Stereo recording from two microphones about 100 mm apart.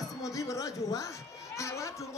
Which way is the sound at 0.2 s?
35° left (ahead or behind).